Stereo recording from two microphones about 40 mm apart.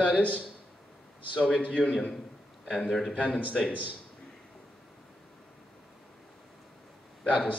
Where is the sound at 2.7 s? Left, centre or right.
Centre.